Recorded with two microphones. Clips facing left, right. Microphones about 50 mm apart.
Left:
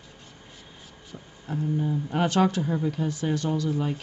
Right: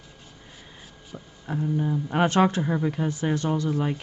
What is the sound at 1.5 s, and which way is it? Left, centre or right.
Speech, right.